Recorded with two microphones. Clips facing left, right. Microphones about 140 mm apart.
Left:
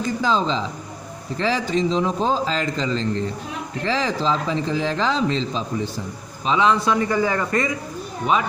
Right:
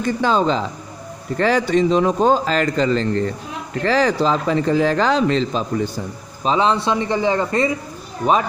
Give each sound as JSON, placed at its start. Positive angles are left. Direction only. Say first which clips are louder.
{"t": 0.0, "sound": "a man's voice", "louder": "right 4 dB", "side_deg": -60}
{"t": 6.4, "sound": "a man's voice", "louder": "right 1 dB", "side_deg": -35}
{"t": 8.2, "sound": "speech", "louder": "right 4 dB", "side_deg": -40}